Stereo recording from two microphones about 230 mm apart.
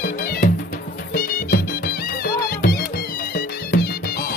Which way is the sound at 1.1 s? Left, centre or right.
Left.